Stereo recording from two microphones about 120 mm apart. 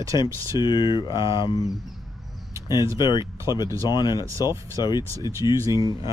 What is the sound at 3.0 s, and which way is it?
Speech, 40° left (ahead or behind).